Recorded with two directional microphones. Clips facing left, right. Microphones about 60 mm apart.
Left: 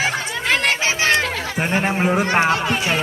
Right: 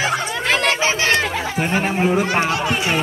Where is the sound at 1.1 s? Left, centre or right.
Centre.